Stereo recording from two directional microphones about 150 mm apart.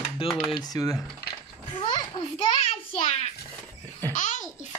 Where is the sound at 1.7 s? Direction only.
35° left (ahead or behind).